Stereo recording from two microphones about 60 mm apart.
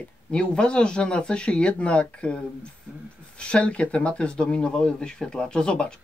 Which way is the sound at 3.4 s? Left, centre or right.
Centre.